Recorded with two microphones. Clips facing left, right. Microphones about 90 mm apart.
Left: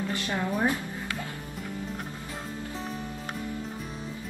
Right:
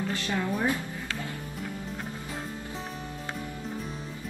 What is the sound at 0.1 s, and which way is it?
Speech, 20° left (ahead or behind).